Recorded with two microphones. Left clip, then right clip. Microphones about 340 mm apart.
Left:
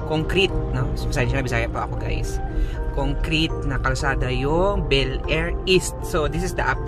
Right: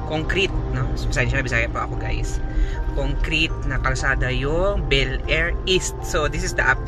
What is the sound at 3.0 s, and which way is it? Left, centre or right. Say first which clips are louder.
Speech: right 1 dB; centre.